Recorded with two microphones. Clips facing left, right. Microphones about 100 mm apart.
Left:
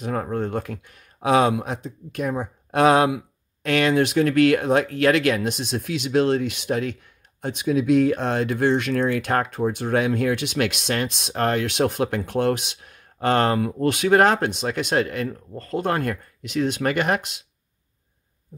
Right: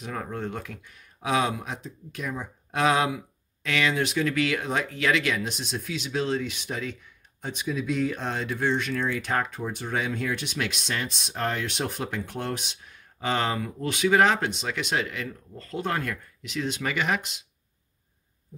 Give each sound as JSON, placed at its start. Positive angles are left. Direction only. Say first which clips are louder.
{"t": 0.0, "sound": "speech", "louder": "left 7 dB", "side_deg": 45}